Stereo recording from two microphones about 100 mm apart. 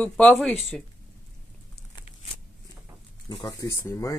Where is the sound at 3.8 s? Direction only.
30° left (ahead or behind).